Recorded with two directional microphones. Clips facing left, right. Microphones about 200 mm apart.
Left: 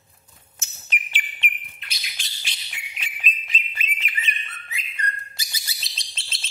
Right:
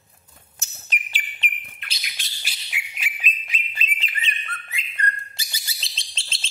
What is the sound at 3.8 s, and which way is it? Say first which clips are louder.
Bird: right 2 dB; 30° right (ahead or behind).